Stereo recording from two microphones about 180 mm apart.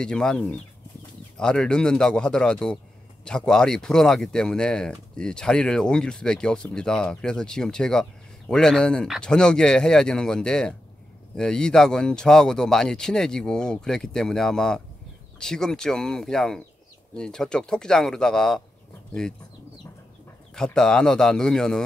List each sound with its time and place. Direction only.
0.0 s speech: 5° left (ahead or behind)
20.5 s speech: 5° left (ahead or behind)